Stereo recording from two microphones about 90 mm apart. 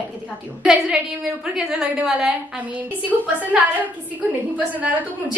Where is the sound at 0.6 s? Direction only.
5° right (ahead or behind).